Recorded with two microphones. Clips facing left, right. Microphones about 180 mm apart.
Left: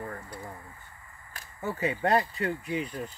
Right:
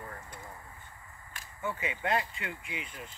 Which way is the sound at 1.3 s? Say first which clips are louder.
Left 3 dB; 40° left (ahead or behind).